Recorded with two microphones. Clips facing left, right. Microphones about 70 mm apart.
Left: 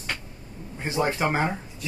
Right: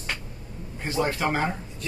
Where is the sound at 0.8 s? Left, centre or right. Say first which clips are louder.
Left 1 dB; centre.